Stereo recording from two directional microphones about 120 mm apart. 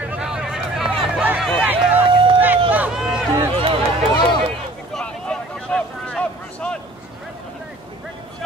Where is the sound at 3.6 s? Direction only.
50° right (ahead or behind).